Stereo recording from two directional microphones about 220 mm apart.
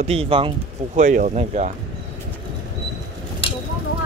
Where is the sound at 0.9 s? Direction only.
35° right (ahead or behind).